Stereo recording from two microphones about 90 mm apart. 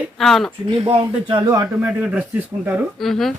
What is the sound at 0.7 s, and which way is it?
Speech, 70° right (ahead or behind).